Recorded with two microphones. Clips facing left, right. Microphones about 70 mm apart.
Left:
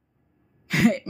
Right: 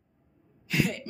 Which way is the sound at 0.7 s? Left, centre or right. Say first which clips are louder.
Left 8 dB; left.